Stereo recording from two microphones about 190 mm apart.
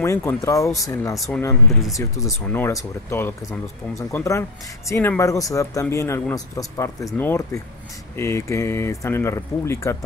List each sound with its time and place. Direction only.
0.0 s speech: 15° left (ahead or behind)
1.1 s speech: centre (ahead or behind)
2.0 s speech: 15° left (ahead or behind)